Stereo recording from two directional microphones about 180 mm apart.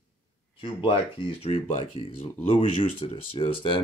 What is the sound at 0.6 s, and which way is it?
Speech, 30° left (ahead or behind).